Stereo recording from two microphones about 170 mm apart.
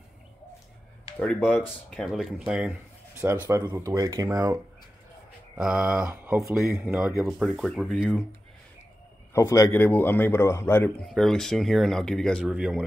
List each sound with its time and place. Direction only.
1.2 s speech: 10° left (ahead or behind)
3.2 s speech: 15° right (ahead or behind)
5.6 s speech: 5° right (ahead or behind)
9.3 s a man's voice: 15° left (ahead or behind); by 12.8 s 5° right (ahead or behind)